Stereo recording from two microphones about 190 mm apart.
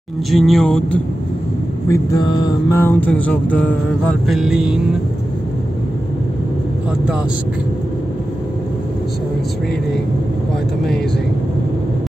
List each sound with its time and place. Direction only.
0.3 s speech: centre (ahead or behind)
1.9 s mantra: 20° left (ahead or behind); by 4.7 s 5° right (ahead or behind)